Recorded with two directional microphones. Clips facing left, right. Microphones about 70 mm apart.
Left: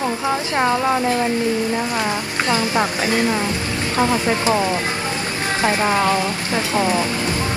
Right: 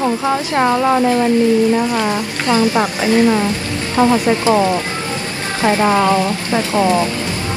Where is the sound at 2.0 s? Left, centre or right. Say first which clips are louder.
Right 3 dB; right.